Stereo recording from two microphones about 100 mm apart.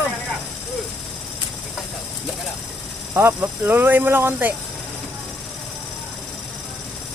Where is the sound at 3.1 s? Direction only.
25° right (ahead or behind).